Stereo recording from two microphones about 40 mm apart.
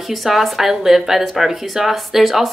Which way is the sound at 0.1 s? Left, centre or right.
Centre.